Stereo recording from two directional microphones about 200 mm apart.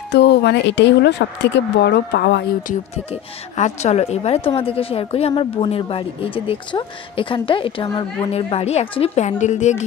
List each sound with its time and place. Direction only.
0.1 s speech: 55° left (ahead or behind)
3.5 s a woman's voice: 35° left (ahead or behind)